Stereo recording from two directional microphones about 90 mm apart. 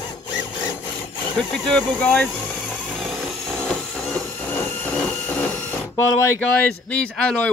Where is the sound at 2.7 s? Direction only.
10° left (ahead or behind).